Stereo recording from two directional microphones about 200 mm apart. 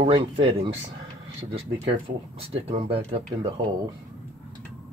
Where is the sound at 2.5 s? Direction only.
30° right (ahead or behind).